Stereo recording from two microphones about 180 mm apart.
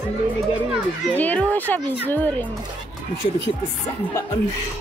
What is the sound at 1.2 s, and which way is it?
Speech, 10° left (ahead or behind).